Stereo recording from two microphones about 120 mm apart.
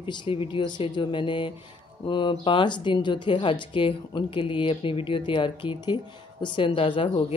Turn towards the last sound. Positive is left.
turn(degrees=45)  # may be behind; listen again after turning